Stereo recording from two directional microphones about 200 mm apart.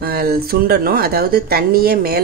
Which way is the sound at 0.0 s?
50° right (ahead or behind).